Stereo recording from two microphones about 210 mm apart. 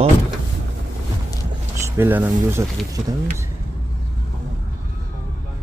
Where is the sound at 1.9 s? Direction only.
10° right (ahead or behind).